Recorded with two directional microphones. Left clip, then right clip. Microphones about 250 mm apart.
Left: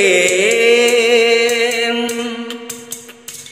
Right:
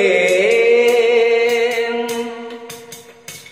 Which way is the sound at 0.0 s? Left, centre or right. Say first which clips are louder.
Left 1 dB; left.